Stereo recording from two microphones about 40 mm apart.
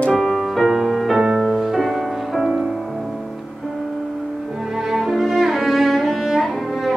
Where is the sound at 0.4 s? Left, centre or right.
Centre.